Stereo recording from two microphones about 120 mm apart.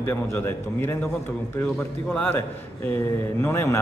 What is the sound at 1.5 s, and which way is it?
Speech, 10° left (ahead or behind).